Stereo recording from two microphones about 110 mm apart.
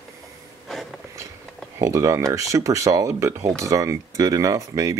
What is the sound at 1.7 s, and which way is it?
Speech, 30° right (ahead or behind).